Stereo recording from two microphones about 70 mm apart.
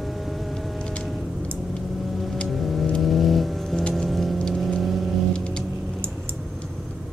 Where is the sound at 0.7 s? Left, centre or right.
Centre.